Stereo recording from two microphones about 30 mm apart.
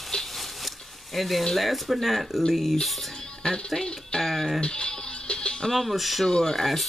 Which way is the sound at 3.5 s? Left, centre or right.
Left.